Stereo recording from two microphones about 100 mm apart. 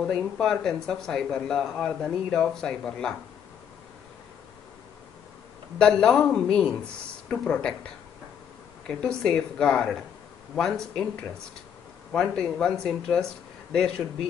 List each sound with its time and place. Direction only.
0.0 s speech: 5° left (ahead or behind)
5.8 s speech: 5° left (ahead or behind)